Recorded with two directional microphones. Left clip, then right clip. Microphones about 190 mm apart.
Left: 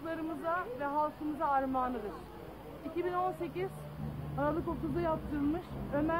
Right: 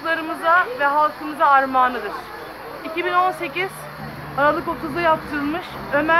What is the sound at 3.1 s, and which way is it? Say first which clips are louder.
A woman's voice: right 16 dB; 10° left (ahead or behind).